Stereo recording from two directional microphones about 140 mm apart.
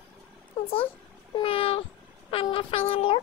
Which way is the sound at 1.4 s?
40° left (ahead or behind).